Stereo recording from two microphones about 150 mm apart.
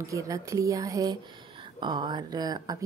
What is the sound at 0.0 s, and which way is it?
Speech, 20° right (ahead or behind).